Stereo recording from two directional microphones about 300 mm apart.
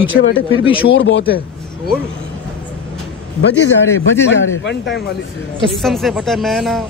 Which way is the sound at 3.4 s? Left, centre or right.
Left.